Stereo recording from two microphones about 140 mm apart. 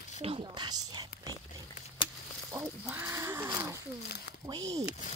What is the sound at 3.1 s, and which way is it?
Crow, 20° right (ahead or behind).